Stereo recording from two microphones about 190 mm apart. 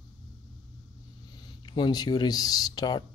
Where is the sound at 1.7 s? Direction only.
25° left (ahead or behind).